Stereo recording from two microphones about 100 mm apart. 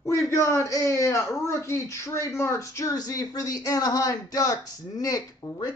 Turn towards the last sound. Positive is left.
turn(degrees=40)  # may be behind; listen again after turning